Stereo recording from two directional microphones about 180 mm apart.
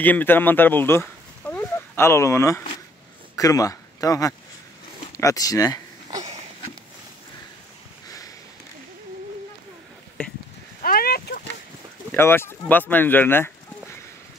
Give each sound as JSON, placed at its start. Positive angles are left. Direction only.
{"t": 0.0, "sound": "speech", "side_deg": 10}
{"t": 10.8, "sound": "a sound", "side_deg": 55}
{"t": 12.1, "sound": "speech", "side_deg": 15}